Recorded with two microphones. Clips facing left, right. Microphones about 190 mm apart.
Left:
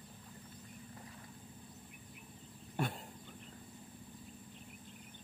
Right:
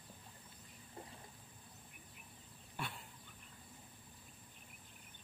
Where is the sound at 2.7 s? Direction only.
45° left (ahead or behind).